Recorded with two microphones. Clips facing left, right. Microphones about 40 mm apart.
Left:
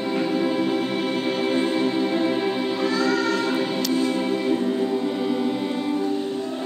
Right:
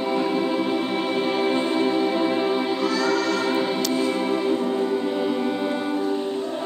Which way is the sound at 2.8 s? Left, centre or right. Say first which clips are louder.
Even; left.